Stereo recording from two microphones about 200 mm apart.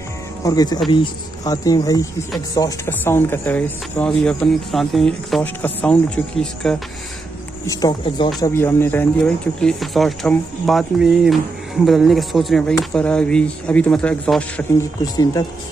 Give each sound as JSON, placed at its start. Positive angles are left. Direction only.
{"t": 0.4, "sound": "speech", "side_deg": 20}
{"t": 7.6, "sound": "speech", "side_deg": 20}